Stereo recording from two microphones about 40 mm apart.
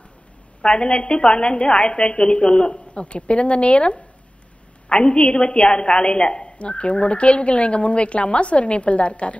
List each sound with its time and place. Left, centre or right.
0.6 s a woman's voice: left